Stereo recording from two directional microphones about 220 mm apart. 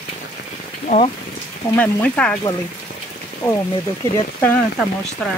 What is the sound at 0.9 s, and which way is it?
Speech, 35° left (ahead or behind).